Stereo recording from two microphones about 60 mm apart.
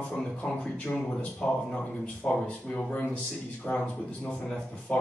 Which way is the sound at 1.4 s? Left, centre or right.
Centre.